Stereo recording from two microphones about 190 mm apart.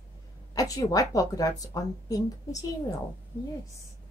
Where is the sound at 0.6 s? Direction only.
20° left (ahead or behind).